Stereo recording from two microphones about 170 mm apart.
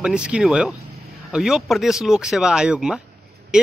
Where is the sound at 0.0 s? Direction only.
5° right (ahead or behind).